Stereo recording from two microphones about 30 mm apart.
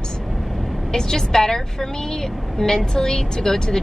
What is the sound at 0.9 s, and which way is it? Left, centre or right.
Speech, centre.